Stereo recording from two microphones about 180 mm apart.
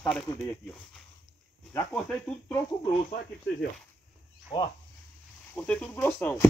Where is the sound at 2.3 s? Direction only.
Centre (ahead or behind).